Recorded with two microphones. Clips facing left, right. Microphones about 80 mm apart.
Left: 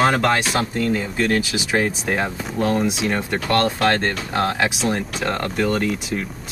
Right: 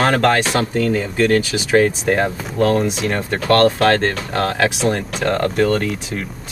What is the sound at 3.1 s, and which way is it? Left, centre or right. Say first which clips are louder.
Speech: right 2 dB; centre.